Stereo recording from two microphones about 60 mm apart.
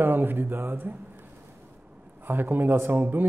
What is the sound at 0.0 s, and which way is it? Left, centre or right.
Speech, right.